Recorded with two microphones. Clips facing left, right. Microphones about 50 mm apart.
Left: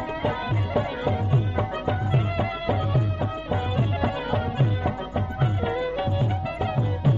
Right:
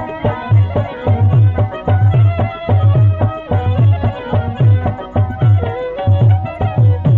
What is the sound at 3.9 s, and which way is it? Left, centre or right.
Music, centre.